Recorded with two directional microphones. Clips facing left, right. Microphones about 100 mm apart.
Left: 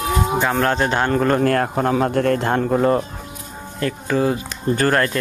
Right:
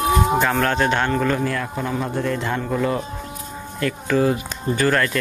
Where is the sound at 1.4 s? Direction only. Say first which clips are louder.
Left 7 dB; 55° left (ahead or behind).